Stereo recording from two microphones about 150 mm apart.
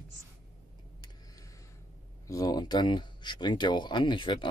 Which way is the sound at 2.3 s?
25° left (ahead or behind).